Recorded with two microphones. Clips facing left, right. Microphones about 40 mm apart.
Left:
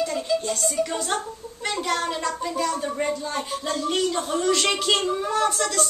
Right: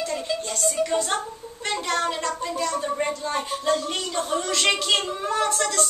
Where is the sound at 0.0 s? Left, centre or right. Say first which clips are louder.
Left 3 dB; centre.